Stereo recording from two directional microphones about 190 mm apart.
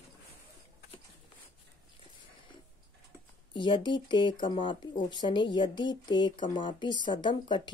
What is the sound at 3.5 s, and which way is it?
Speech, 25° left (ahead or behind).